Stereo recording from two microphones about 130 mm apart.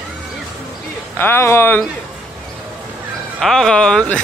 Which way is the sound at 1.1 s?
15° left (ahead or behind).